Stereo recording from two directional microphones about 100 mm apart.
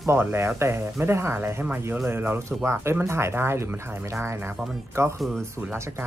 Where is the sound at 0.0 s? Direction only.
25° right (ahead or behind).